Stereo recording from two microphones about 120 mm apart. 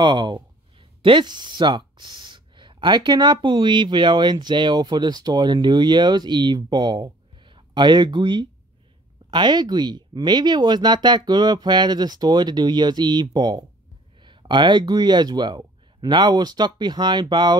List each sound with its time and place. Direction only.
0.0 s speech: 40° right (ahead or behind)